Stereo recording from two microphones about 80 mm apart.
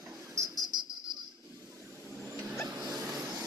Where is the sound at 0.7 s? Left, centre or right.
Right.